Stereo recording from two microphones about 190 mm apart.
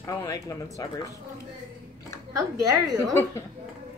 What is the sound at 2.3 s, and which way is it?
Speech, 15° right (ahead or behind).